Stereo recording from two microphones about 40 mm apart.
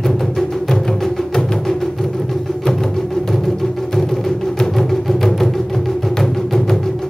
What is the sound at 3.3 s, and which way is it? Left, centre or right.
Music, centre.